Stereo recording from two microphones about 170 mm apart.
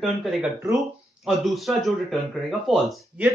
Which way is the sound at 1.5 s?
Centre (ahead or behind).